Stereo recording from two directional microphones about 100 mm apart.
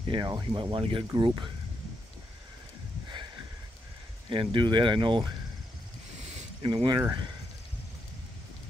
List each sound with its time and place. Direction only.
0.1 s speech: 50° right (ahead or behind); by 1.0 s 65° right (ahead or behind)
1.1 s speech: 50° right (ahead or behind)
4.3 s speech: 60° right (ahead or behind)
6.6 s speech: 50° right (ahead or behind)